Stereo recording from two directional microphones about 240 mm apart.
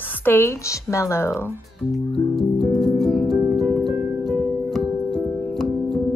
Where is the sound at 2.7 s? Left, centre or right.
Centre.